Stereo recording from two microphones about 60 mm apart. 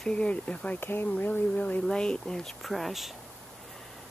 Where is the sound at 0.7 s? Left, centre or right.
Left.